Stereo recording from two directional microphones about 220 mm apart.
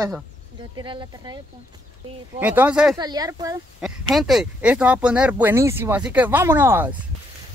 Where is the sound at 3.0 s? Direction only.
15° right (ahead or behind).